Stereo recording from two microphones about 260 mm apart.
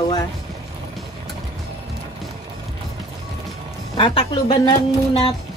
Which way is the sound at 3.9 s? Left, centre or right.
Centre.